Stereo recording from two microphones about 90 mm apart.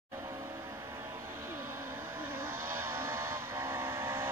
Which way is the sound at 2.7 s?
25° right (ahead or behind).